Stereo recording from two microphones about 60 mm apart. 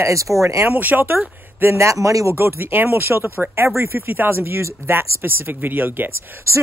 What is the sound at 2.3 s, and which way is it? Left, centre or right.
Speech, right.